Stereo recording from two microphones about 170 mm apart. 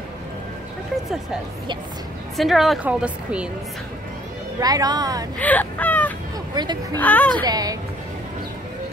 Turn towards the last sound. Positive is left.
turn(degrees=-20)  # may be behind; listen again after turning